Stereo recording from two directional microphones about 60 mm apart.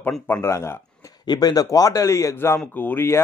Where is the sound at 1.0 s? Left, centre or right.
Left.